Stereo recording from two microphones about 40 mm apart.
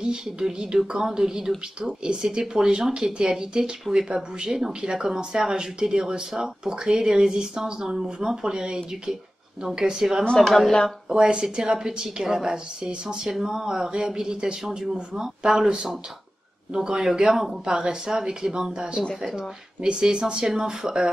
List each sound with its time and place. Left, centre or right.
0.0 s speech: centre
10.3 s speech: centre
11.1 s speech: right